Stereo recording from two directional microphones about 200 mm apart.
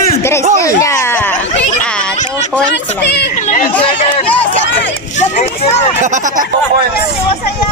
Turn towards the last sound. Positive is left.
turn(degrees=-35)  # may be behind; listen again after turning